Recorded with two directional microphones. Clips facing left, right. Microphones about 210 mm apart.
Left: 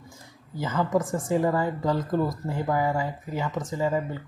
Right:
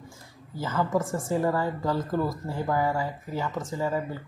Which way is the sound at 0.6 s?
15° left (ahead or behind).